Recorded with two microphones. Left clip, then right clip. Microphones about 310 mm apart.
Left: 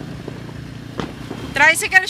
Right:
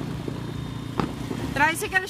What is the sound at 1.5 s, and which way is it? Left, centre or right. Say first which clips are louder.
Speech: left 9 dB; centre.